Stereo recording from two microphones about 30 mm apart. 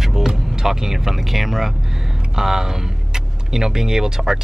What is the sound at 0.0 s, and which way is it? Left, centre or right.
Music, centre.